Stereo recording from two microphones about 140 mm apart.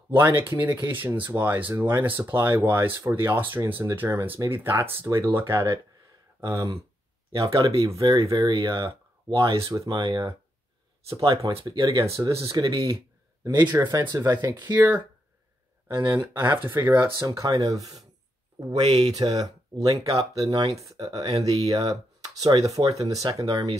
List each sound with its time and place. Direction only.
0.1 s speech: 15° right (ahead or behind)
16.1 s speech: 15° right (ahead or behind)
17.3 s speech: 25° right (ahead or behind)
18.7 s speech: 40° right (ahead or behind)